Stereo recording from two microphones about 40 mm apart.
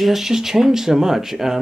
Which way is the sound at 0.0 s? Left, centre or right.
Centre.